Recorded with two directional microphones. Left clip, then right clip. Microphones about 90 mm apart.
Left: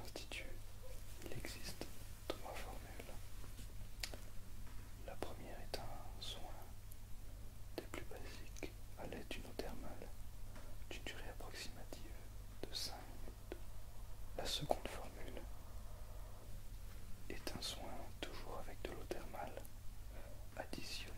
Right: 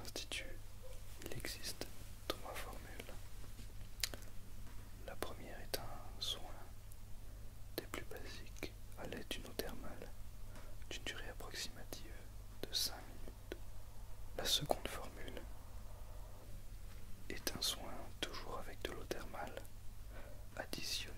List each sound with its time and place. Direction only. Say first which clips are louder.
0.0 s whispering: right 4 dB; 25° right (ahead or behind)
4.0 s a sound: right 6 dB; 25° right (ahead or behind)
5.0 s whispering: right 2 dB; 25° right (ahead or behind)
7.7 s whispering: right 3 dB; 25° right (ahead or behind)
14.3 s whispering: right 4 dB; 25° right (ahead or behind)
17.3 s whispering: right 6 dB; 25° right (ahead or behind)